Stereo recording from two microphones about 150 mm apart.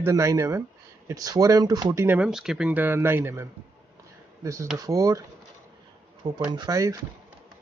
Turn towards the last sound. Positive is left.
turn(degrees=-20)  # may be behind; listen again after turning